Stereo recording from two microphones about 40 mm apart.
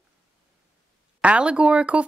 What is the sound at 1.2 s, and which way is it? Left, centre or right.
Speech, right.